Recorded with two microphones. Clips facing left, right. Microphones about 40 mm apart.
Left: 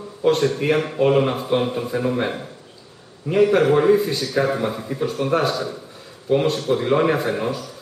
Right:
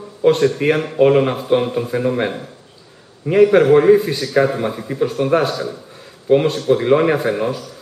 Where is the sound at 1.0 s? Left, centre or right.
Centre.